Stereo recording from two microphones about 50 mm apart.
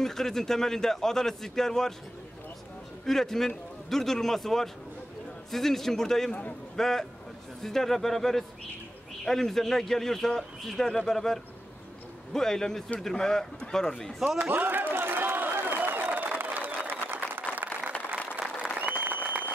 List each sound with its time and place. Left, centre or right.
0.0 s speech: centre
3.1 s speech: centre
14.4 s a sound: right
18.8 s applause: right